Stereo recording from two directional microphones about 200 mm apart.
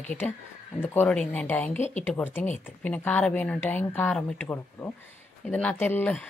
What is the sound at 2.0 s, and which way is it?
Speech, 10° left (ahead or behind).